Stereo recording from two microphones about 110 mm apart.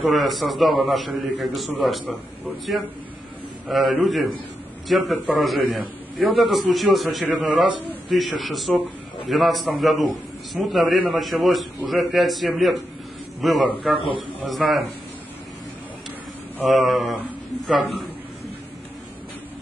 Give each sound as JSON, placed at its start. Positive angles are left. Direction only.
{"t": 0.0, "sound": "a man's voice", "side_deg": 0}
{"t": 3.6, "sound": "a man's voice", "side_deg": 0}
{"t": 13.9, "sound": "a man's voice", "side_deg": 55}
{"t": 14.4, "sound": "a man's voice", "side_deg": 0}
{"t": 16.6, "sound": "a man's voice", "side_deg": 0}